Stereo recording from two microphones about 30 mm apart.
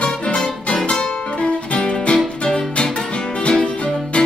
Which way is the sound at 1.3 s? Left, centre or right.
Left.